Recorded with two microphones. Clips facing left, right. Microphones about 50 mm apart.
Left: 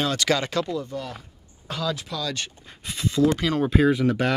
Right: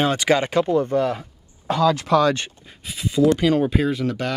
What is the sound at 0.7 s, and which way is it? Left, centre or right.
Speech, right.